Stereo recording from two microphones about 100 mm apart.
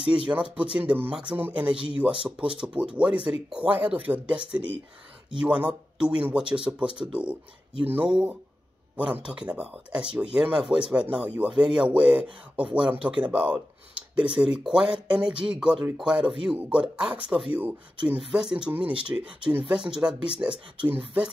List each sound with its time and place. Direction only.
0.1 s speech: 10° right (ahead or behind)
20.4 s speech: 25° right (ahead or behind)